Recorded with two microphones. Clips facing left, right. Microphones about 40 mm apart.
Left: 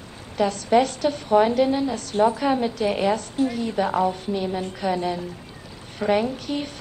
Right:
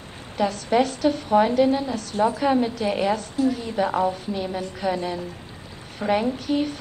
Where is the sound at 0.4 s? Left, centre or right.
Centre.